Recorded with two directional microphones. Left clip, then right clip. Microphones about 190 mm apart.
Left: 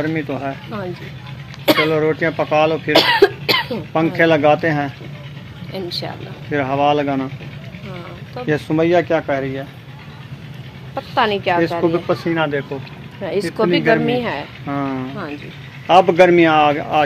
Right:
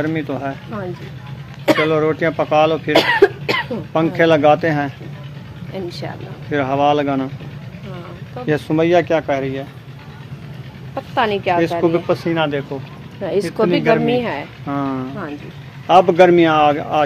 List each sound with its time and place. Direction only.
0.0 s speech: centre (ahead or behind)
8.5 s speech: centre (ahead or behind)
11.0 s speech: 20° right (ahead or behind)
11.8 s speech: centre (ahead or behind)
13.6 s speech: 45° right (ahead or behind)
14.7 s speech: centre (ahead or behind)